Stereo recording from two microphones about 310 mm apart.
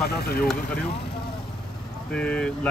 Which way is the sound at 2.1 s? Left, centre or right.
Centre.